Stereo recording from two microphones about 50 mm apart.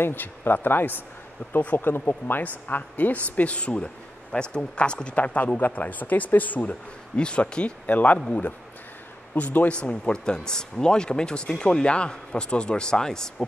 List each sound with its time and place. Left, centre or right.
0.0 s speech: left
1.4 s speech: left
1.8 s speech: left
7.2 s speech: centre; by 9.7 s left
9.7 s speech: left